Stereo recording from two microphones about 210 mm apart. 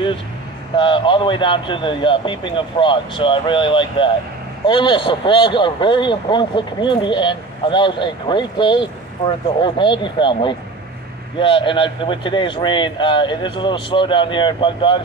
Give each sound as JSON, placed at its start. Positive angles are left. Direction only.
{"t": 0.7, "sound": "speech", "side_deg": 25}